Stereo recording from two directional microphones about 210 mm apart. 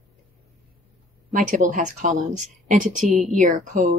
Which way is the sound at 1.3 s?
40° right (ahead or behind).